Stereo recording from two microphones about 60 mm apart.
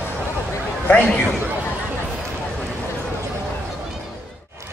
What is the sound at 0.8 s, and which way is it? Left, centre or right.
Speech, left.